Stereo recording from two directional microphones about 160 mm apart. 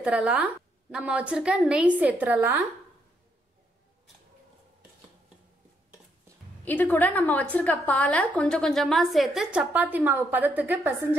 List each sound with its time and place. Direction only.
0.0 s a woman's voice: 10° right (ahead or behind)
6.6 s a woman's voice: 10° left (ahead or behind); by 11.1 s 15° right (ahead or behind)